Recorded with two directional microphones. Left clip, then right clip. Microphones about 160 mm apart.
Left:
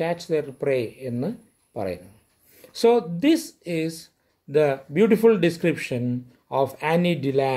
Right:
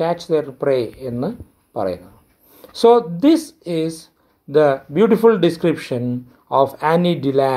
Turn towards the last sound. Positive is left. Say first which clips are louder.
# right 6 dB
turn(degrees=15)  # may be behind; listen again after turning